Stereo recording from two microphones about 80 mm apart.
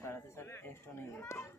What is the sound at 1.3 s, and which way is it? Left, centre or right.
Speech, left.